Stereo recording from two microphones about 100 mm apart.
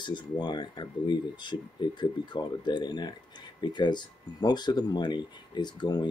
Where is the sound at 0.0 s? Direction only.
50° left (ahead or behind).